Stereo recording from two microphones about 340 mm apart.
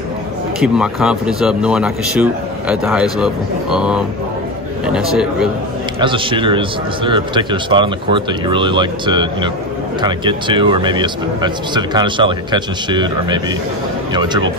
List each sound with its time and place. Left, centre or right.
0.6 s speech: centre
5.9 s speech: centre